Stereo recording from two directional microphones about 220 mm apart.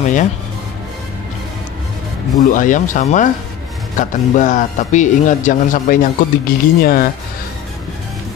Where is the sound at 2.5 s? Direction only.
35° left (ahead or behind).